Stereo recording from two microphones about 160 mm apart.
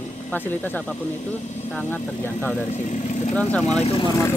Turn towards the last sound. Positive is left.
turn(degrees=20)  # may be behind; listen again after turning